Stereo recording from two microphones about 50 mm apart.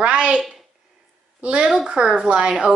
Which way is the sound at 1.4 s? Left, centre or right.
Centre.